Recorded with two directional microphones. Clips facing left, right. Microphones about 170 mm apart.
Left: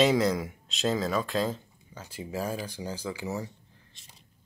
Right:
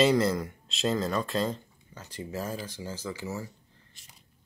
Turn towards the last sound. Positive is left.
turn(degrees=15)  # may be behind; listen again after turning